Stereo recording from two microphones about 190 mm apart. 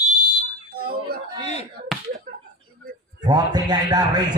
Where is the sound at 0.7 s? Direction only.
55° right (ahead or behind).